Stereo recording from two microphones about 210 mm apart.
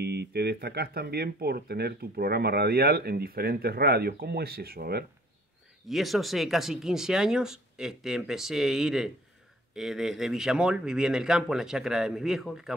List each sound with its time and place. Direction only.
0.0 s speech: 50° right (ahead or behind)
5.9 s speech: centre (ahead or behind)